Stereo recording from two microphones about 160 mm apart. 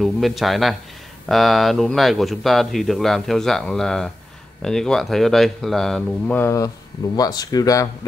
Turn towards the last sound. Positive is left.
turn(degrees=20)  # may be behind; listen again after turning